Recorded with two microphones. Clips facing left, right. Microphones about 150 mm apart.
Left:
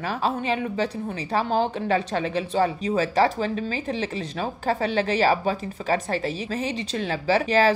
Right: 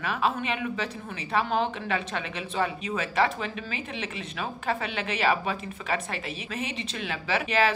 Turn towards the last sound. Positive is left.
turn(degrees=35)  # may be behind; listen again after turning